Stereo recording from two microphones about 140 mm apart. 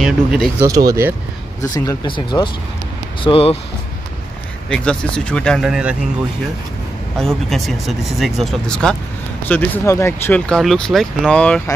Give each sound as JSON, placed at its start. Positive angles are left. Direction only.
{"t": 0.0, "sound": "speech", "side_deg": 0}
{"t": 0.6, "sound": "speech", "side_deg": -25}
{"t": 2.0, "sound": "speech", "side_deg": 35}
{"t": 4.6, "sound": "speech", "side_deg": 5}
{"t": 7.2, "sound": "speech", "side_deg": 0}
{"t": 9.5, "sound": "speech", "side_deg": 15}
{"t": 10.5, "sound": "speech", "side_deg": 0}